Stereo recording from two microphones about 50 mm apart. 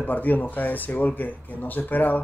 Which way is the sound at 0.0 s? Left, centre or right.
Left.